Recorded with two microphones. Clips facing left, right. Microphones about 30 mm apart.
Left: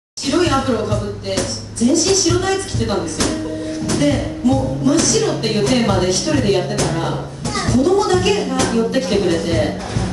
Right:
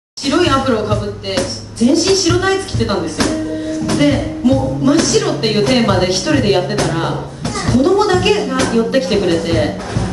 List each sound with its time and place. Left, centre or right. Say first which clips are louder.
0.3 s a woman's voice: right 3 dB; right